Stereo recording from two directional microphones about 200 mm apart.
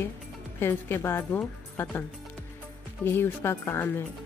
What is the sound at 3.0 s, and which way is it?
Speech, 10° left (ahead or behind).